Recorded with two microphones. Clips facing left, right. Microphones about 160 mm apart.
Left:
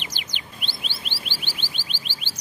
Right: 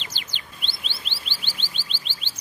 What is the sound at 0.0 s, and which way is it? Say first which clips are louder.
Chirp: left 2 dB; 15° left (ahead or behind).